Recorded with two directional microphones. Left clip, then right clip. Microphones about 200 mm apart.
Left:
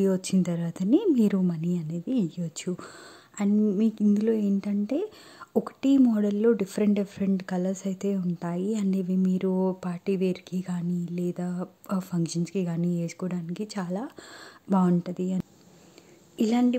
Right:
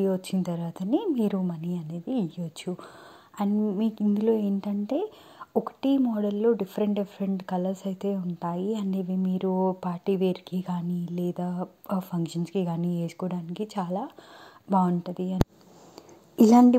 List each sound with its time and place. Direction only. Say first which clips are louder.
0.0 s speech: left 1 dB; 20° left (ahead or behind)
16.3 s a woman's voice: right 8 dB; 15° right (ahead or behind)